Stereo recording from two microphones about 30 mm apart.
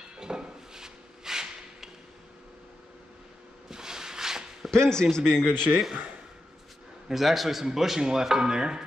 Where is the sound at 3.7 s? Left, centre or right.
Centre.